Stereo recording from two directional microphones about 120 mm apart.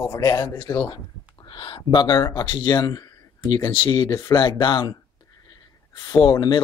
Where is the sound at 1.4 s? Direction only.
45° left (ahead or behind).